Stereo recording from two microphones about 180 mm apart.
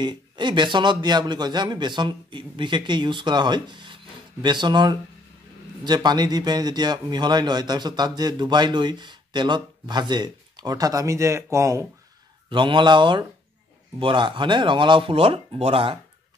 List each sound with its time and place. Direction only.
0.0 s a man's voice: 25° right (ahead or behind)